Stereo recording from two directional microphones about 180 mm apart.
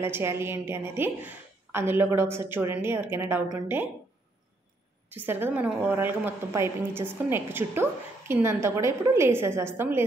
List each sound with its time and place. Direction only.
0.0 s a woman's voice: 15° right (ahead or behind)
5.1 s a woman's voice: 10° right (ahead or behind)